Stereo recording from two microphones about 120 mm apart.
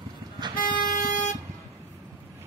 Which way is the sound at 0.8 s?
90° left.